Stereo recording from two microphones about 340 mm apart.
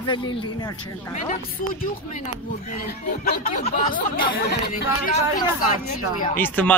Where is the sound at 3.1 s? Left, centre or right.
Left.